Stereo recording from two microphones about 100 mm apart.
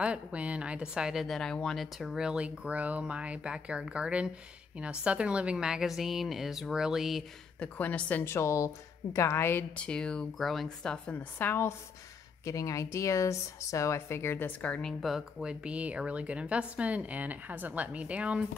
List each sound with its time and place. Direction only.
0.0 s a woman's voice: 10° right (ahead or behind)
7.5 s a woman's voice: 15° left (ahead or behind)
9.8 s speech: 10° left (ahead or behind)
12.4 s speech: 30° left (ahead or behind); by 18.4 s 15° right (ahead or behind)